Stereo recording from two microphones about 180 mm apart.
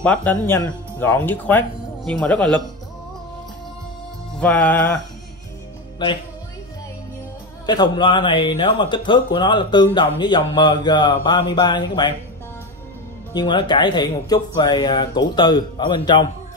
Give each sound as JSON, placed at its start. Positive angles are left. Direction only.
{"t": 0.0, "sound": "speech", "side_deg": 10}
{"t": 4.4, "sound": "speech", "side_deg": 5}
{"t": 7.6, "sound": "speech", "side_deg": 25}
{"t": 13.3, "sound": "speech", "side_deg": 25}